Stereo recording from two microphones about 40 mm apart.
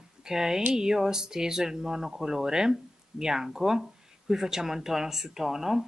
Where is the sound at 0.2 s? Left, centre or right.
Centre.